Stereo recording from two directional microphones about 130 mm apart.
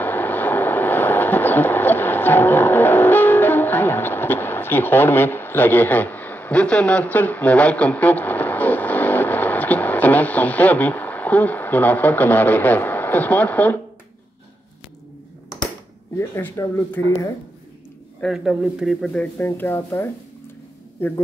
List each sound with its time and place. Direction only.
0.0 s a sound: 15° left (ahead or behind)
16.2 s speech: 20° left (ahead or behind)
18.2 s a man's voice: centre (ahead or behind)
19.3 s speech: 15° left (ahead or behind)